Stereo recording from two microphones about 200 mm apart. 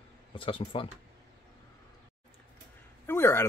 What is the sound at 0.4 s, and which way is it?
Speech, 25° left (ahead or behind).